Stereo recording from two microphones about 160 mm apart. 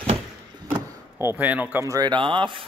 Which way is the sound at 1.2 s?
10° right (ahead or behind).